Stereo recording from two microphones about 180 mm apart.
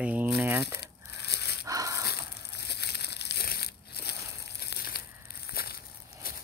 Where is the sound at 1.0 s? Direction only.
65° left (ahead or behind).